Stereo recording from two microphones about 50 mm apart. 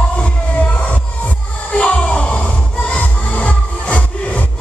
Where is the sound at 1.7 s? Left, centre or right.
Left.